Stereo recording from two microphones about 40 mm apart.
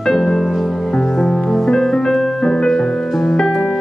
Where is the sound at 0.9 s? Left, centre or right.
Centre.